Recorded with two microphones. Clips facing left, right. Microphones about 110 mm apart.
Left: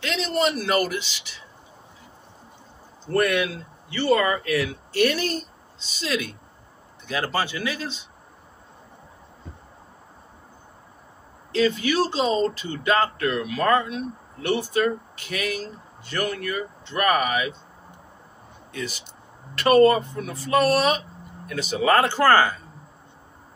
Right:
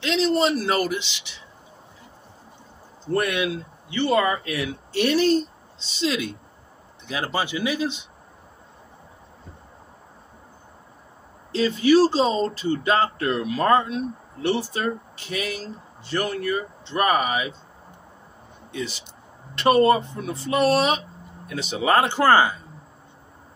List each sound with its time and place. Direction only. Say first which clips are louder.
0.0 s speech: right 3 dB; 30° right (ahead or behind)
3.2 s speech: left 2 dB; 20° right (ahead or behind)
11.5 s speech: right 4 dB; 30° right (ahead or behind)
18.7 s speech: right 2 dB; 25° right (ahead or behind)